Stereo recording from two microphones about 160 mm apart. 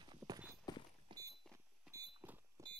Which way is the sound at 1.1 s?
30° right (ahead or behind).